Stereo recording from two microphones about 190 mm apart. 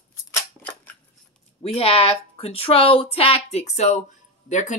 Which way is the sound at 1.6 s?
30° left (ahead or behind).